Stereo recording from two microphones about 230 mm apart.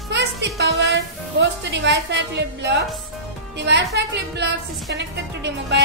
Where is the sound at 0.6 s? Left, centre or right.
Right.